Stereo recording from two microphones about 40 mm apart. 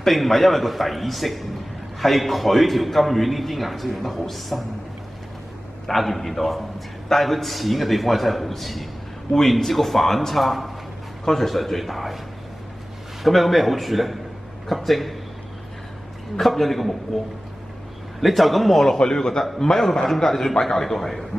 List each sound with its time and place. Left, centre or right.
0.0 s a man's voice: centre
5.9 s a man's voice: centre
13.2 s a man's voice: centre
16.3 s a man's voice: centre
18.2 s a man's voice: centre
18.9 s a man's voice: centre